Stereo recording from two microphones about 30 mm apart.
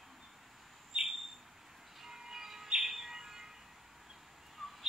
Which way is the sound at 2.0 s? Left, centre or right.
Centre.